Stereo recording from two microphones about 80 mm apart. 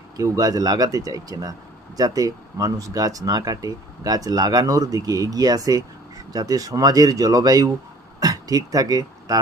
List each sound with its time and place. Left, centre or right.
0.2 s speech: right